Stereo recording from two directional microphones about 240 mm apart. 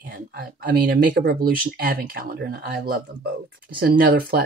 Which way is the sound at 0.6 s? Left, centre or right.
Right.